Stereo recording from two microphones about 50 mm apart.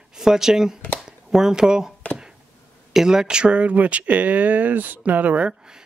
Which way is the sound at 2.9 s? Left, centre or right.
Centre.